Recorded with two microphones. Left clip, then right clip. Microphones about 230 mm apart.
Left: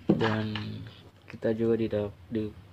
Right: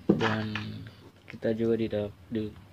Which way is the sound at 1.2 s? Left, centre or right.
Centre.